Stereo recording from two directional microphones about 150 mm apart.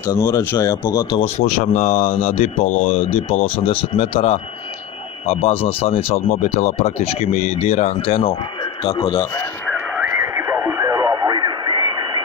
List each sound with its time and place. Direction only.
0.0 s speech: 20° left (ahead or behind)
1.6 s speech: 50° left (ahead or behind)
3.1 s speech: 40° left (ahead or behind)
6.1 s speech: 70° left (ahead or behind); by 9.5 s 20° left (ahead or behind)
10.3 s radio: 20° right (ahead or behind)